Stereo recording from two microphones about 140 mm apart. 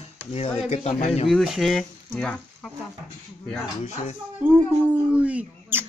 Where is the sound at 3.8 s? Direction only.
55° left (ahead or behind).